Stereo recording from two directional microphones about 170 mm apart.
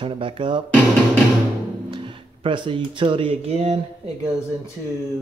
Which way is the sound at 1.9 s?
30° right (ahead or behind).